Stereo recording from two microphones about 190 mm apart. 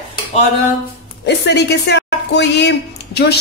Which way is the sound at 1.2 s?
65° left (ahead or behind).